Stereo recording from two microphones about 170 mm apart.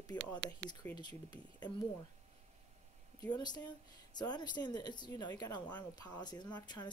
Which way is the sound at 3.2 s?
25° left (ahead or behind).